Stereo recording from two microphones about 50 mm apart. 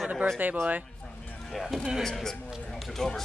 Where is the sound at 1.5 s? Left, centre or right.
Centre.